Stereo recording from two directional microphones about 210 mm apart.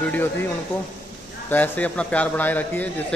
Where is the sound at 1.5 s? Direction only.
10° left (ahead or behind).